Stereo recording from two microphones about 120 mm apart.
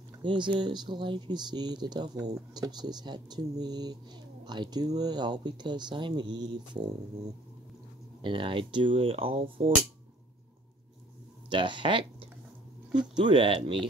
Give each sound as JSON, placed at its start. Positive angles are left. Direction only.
{"t": 0.2, "sound": "speech", "side_deg": -40}
{"t": 8.2, "sound": "speech", "side_deg": -45}
{"t": 11.4, "sound": "speech", "side_deg": -40}
{"t": 13.1, "sound": "speech", "side_deg": -45}